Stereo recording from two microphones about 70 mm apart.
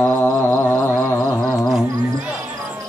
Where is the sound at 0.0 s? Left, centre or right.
Left.